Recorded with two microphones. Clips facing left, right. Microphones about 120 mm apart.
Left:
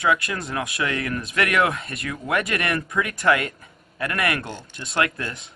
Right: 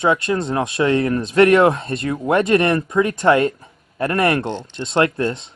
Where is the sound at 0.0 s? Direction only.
30° right (ahead or behind).